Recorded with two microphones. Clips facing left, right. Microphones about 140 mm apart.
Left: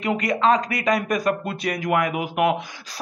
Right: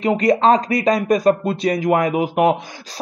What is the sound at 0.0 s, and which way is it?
A man's voice, 35° right (ahead or behind).